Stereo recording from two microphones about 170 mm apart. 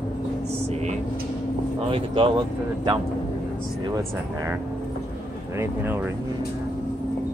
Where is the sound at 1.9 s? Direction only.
30° right (ahead or behind).